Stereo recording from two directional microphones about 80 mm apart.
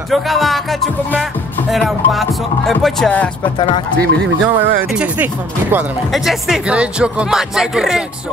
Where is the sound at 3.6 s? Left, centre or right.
Left.